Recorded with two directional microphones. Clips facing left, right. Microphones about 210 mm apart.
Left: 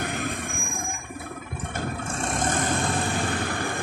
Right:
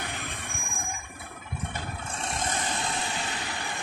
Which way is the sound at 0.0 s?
45° left (ahead or behind).